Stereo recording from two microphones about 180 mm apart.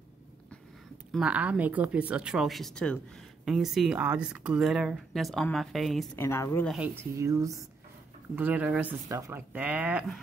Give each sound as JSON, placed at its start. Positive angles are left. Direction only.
{"t": 1.1, "sound": "speech", "side_deg": -5}
{"t": 6.1, "sound": "a woman's voice", "side_deg": 15}
{"t": 6.7, "sound": "speech", "side_deg": -10}